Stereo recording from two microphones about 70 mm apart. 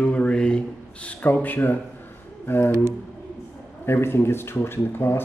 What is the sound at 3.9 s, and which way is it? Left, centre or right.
Speech, left.